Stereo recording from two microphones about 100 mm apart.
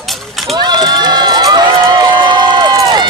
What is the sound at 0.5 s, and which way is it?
Run, 45° right (ahead or behind).